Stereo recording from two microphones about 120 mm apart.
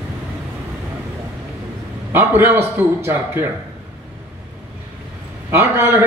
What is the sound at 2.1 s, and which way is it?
A man's voice, 20° right (ahead or behind).